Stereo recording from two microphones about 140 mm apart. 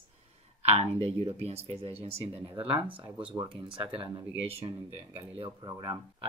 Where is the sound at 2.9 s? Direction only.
10° right (ahead or behind).